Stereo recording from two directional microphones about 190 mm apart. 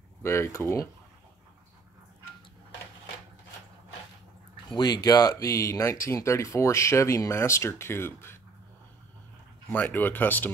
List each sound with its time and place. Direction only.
0.2 s speech: 15° left (ahead or behind)
4.6 s speech: 20° left (ahead or behind)
9.7 s speech: 10° left (ahead or behind)